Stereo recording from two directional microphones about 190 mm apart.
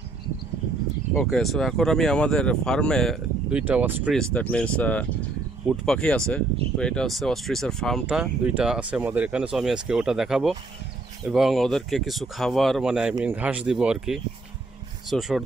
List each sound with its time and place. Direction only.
1.2 s speech: centre (ahead or behind)
4.1 s speech: 5° left (ahead or behind)